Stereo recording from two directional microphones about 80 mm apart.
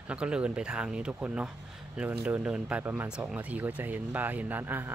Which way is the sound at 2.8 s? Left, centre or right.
Right.